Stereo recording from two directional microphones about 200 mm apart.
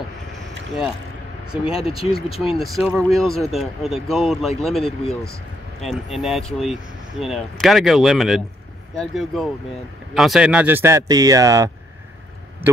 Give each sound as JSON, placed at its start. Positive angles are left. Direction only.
{"t": 1.7, "sound": "speech", "side_deg": 30}
{"t": 2.3, "sound": "speech", "side_deg": 0}